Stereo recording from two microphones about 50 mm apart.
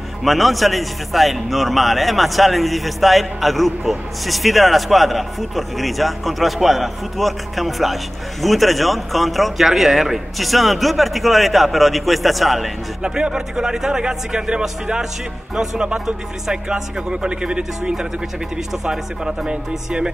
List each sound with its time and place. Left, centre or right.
0.2 s a man's voice: centre
13.0 s speech: centre